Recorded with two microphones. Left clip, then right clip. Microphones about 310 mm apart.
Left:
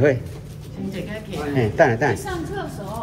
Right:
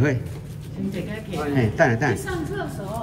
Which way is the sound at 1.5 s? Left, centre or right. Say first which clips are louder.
Left 3 dB; centre.